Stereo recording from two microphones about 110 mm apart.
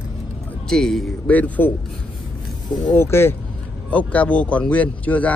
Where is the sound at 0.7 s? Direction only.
5° left (ahead or behind).